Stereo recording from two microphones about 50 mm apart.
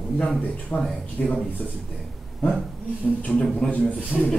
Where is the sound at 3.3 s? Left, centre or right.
Centre.